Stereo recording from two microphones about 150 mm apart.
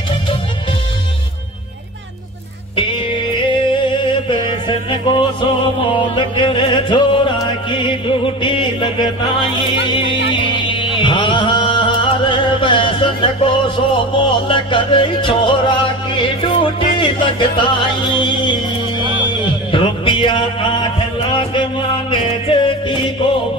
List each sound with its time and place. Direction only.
3.4 s music: 35° left (ahead or behind)